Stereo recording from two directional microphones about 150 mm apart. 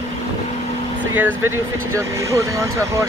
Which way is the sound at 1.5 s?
15° right (ahead or behind).